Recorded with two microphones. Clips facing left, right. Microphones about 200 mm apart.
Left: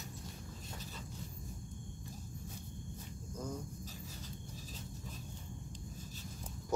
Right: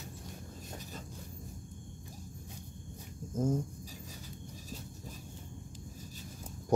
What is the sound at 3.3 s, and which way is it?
Cricket, 45° right (ahead or behind).